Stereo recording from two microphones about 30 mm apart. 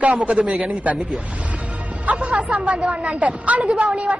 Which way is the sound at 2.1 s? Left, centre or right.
Right.